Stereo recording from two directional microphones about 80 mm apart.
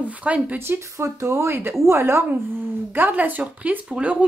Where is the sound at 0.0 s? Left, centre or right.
Centre.